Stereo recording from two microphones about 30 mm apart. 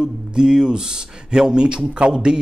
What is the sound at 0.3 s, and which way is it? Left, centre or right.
Speech, right.